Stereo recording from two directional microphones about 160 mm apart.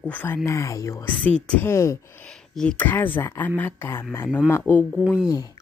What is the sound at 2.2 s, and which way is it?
Speech, 5° left (ahead or behind).